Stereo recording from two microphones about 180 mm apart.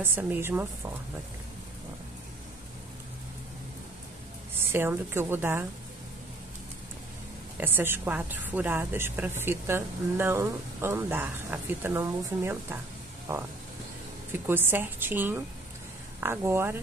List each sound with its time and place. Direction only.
0.0 s speech: 10° right (ahead or behind)
4.6 s speech: 10° right (ahead or behind)
7.5 s speech: 10° right (ahead or behind)